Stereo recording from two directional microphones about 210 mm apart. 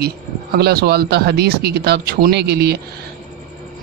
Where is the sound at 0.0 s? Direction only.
50° right (ahead or behind).